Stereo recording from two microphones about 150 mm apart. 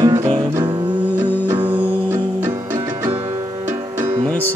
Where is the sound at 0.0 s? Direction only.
20° right (ahead or behind).